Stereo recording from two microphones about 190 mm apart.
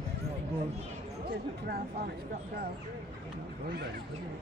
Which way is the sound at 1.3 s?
55° right (ahead or behind).